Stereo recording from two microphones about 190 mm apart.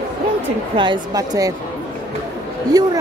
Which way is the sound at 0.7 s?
25° right (ahead or behind).